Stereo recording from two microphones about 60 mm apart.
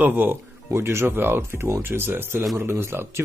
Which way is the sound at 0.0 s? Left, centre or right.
Right.